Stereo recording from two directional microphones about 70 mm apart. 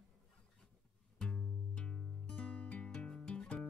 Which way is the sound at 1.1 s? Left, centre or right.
Centre.